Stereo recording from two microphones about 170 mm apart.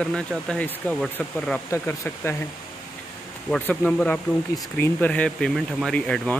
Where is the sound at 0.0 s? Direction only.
5° left (ahead or behind).